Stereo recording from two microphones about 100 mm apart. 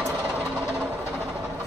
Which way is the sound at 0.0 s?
25° right (ahead or behind).